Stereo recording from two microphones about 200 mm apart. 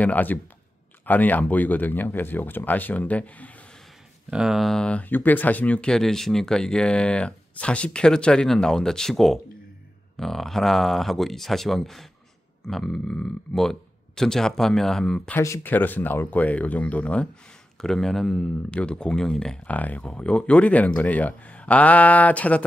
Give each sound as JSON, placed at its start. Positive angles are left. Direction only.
{"t": 0.0, "sound": "speech", "side_deg": 10}